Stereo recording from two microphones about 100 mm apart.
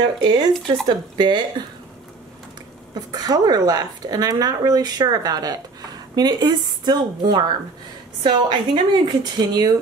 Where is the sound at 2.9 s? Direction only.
40° right (ahead or behind).